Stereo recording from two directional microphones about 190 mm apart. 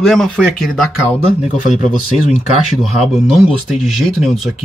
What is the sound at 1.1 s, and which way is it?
Speech, 40° left (ahead or behind).